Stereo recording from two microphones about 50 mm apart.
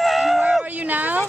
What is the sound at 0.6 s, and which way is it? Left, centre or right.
Speech, right.